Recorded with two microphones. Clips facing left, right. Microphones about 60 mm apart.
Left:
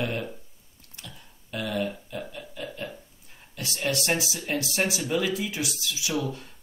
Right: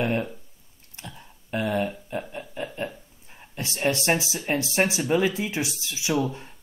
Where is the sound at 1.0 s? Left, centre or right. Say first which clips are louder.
Right 5 dB; right.